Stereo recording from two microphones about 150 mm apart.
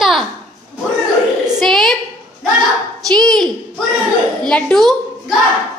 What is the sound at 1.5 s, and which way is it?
Speech, centre (ahead or behind).